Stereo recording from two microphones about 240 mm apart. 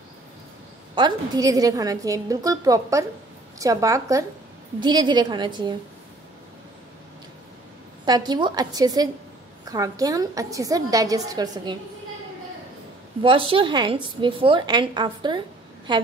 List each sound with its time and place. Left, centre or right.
0.9 s a woman's voice: centre
8.0 s a woman's voice: centre
13.2 s a woman's voice: right